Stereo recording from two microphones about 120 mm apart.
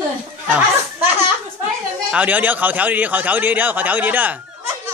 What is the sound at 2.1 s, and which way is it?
A man's voice, 15° right (ahead or behind).